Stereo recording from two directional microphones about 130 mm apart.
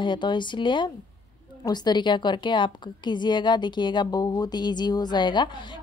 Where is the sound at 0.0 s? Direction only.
35° left (ahead or behind).